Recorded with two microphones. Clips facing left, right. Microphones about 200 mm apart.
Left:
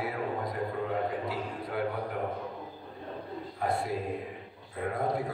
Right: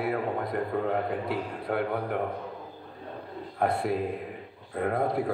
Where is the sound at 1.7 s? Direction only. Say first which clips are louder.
Right 5 dB; 60° right (ahead or behind).